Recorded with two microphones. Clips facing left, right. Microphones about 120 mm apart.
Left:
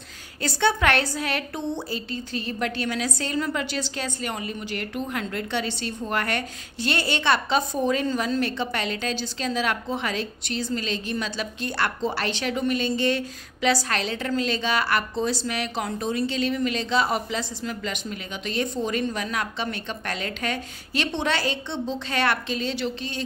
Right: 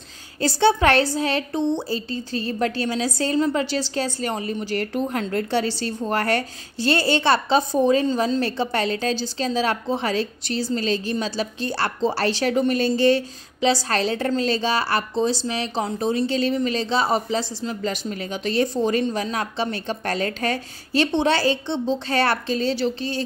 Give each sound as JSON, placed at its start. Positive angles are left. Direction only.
{"t": 0.4, "sound": "a woman's voice", "side_deg": -30}